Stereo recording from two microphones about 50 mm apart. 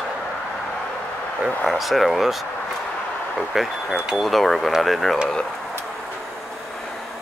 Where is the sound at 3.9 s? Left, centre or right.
Centre.